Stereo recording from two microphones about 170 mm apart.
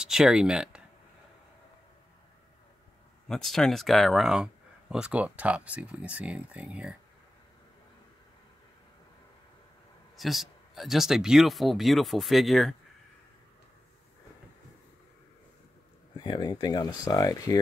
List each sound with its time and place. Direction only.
0.0 s speech: 5° right (ahead or behind)
3.3 s speech: centre (ahead or behind)
10.1 s speech: centre (ahead or behind)
16.2 s speech: 25° left (ahead or behind)